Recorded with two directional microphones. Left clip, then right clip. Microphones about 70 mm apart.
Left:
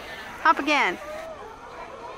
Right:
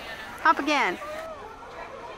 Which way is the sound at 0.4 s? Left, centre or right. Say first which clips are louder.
Left 2 dB; centre.